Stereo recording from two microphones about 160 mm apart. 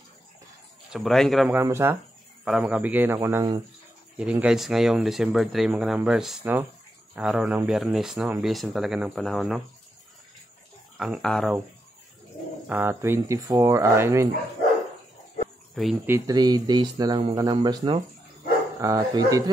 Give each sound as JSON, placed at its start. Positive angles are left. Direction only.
{"t": 0.9, "sound": "speech", "side_deg": 0}
{"t": 1.5, "sound": "speech", "side_deg": -15}
{"t": 11.0, "sound": "speech", "side_deg": 0}
{"t": 12.6, "sound": "speech", "side_deg": -10}
{"t": 15.7, "sound": "speech", "side_deg": 0}
{"t": 16.3, "sound": "speech", "side_deg": -25}